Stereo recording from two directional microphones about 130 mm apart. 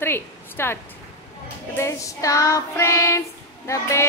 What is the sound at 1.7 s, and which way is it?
Child singing, 20° left (ahead or behind).